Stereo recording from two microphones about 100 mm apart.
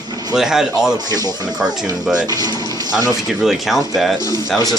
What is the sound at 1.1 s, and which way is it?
Speech, 40° right (ahead or behind).